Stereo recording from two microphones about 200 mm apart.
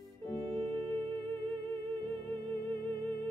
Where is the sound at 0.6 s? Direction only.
20° right (ahead or behind).